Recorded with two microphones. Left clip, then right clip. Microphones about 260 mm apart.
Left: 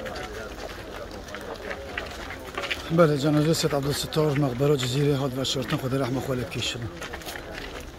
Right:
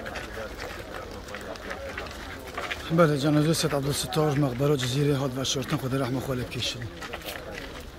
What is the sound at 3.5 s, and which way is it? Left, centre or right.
Speech, centre.